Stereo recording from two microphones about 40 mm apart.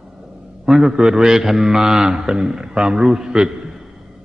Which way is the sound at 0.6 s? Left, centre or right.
Centre.